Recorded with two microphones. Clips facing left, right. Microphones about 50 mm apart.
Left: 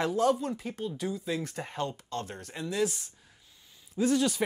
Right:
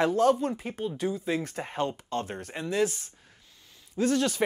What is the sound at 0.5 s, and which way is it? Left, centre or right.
Speech, right.